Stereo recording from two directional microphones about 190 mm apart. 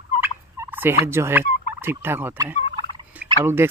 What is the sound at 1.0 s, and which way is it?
Speech, 10° right (ahead or behind).